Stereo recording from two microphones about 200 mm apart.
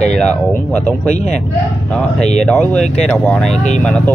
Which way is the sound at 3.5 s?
35° left (ahead or behind).